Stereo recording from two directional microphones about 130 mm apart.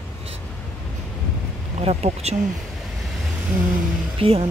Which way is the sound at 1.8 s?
55° right (ahead or behind).